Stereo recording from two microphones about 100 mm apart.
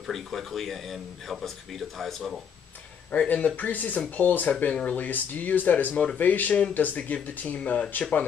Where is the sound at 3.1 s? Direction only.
15° left (ahead or behind).